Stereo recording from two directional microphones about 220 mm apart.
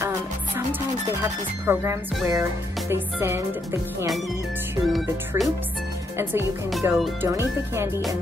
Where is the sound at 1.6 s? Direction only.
10° right (ahead or behind).